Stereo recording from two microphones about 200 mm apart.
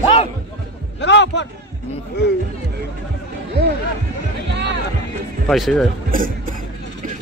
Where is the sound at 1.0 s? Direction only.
60° left (ahead or behind).